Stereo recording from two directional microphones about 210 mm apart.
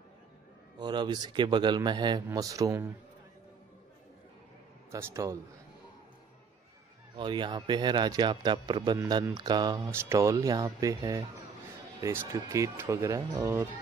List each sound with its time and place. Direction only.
0.7 s a man's voice: 20° right (ahead or behind)
4.9 s speech: 15° right (ahead or behind)
7.2 s a man's voice: 20° right (ahead or behind)